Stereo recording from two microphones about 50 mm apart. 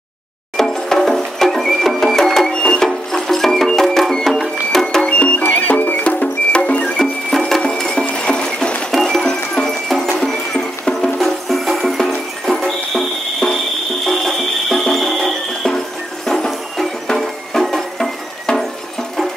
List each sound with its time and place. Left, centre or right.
0.6 s music: centre
5.0 s music: left
6.0 s music: left
7.0 s music: centre
8.9 s music: centre
18.5 s music: centre